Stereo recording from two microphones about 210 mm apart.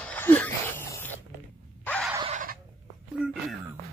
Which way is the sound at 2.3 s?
40° right (ahead or behind).